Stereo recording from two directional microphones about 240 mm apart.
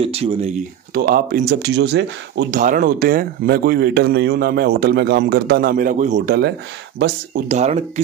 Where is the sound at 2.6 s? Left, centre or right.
Right.